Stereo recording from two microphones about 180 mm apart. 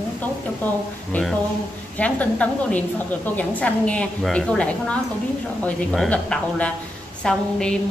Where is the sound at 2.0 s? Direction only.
5° left (ahead or behind).